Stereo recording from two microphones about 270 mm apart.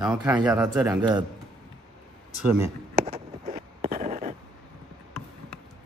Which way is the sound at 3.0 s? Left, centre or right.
Right.